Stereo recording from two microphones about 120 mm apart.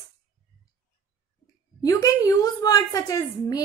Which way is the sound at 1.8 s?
30° left (ahead or behind).